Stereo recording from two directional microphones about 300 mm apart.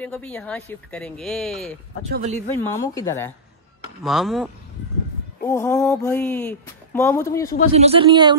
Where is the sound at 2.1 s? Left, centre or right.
Right.